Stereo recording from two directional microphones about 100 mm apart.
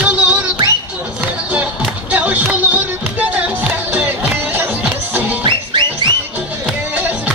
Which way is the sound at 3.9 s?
20° right (ahead or behind).